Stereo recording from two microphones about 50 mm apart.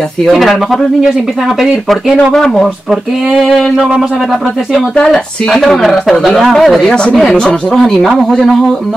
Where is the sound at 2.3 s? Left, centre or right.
Centre.